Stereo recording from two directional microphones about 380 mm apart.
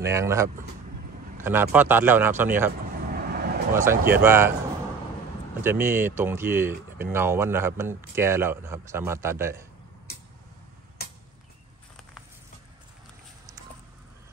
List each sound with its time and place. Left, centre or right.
0.0 s speech: centre
2.9 s vehicle: right
3.7 s speech: centre
5.6 s speech: centre
11.0 s a sound: left